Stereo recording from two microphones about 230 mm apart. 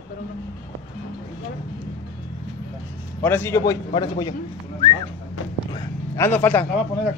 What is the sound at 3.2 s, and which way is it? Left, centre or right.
Speech, centre.